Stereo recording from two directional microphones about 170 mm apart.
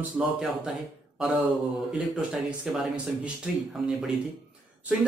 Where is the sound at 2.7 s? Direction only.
5° right (ahead or behind).